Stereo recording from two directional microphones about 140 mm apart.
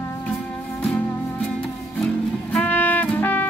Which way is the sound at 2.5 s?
10° left (ahead or behind).